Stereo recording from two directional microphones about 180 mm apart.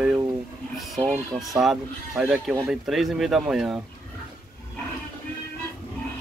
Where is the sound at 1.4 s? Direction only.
Centre (ahead or behind).